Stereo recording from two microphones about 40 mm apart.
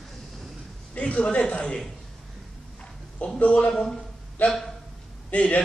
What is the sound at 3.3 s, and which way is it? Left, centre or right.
Speech, left.